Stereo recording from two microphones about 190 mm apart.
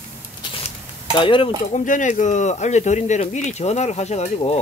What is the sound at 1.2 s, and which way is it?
Speech, 25° left (ahead or behind).